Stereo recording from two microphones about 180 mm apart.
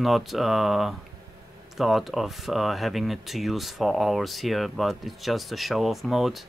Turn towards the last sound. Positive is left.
turn(degrees=0)  # may be behind; listen again after turning